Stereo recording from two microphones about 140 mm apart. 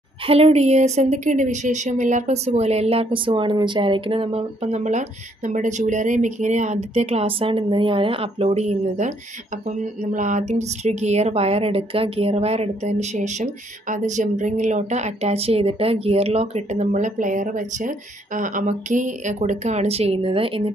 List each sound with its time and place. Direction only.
0.3 s speech: 45° right (ahead or behind)